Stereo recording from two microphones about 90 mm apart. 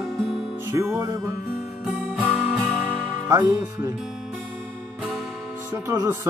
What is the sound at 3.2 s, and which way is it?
Speech, 30° right (ahead or behind).